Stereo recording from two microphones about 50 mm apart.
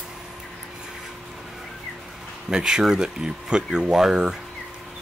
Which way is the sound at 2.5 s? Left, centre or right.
Centre.